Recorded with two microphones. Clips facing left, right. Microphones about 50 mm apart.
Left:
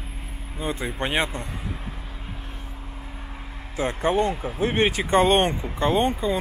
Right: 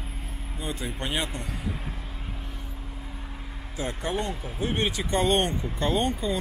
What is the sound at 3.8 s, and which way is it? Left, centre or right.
Speech, left.